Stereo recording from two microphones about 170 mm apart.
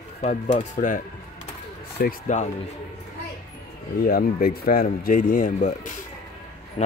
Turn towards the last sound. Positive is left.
turn(degrees=40)  # may be behind; listen again after turning